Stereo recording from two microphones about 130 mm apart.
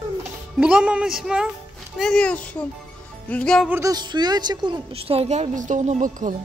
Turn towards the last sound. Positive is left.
turn(degrees=-85)